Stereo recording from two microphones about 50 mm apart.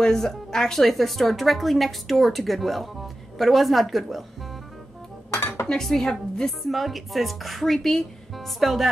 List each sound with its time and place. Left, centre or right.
0.0 s speech: centre
5.3 s dishes: left
5.7 s speech: centre